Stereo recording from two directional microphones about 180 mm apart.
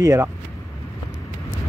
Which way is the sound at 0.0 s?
20° right (ahead or behind).